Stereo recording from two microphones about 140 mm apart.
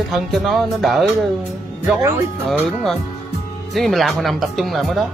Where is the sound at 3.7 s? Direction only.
Centre (ahead or behind).